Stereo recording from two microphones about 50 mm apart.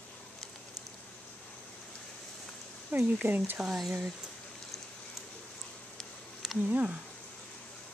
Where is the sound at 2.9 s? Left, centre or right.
Right.